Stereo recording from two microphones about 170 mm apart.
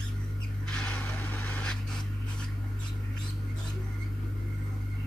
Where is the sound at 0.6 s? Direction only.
5° left (ahead or behind).